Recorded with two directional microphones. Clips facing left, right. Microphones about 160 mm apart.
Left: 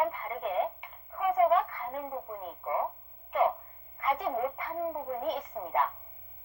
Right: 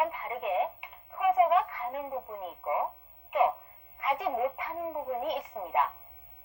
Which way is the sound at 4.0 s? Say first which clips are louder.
Right 1 dB; 5° right (ahead or behind).